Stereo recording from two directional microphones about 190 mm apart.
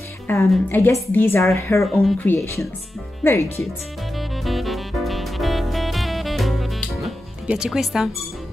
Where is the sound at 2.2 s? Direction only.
15° left (ahead or behind).